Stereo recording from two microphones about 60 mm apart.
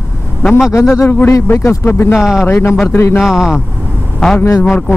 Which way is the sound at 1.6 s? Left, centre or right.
Left.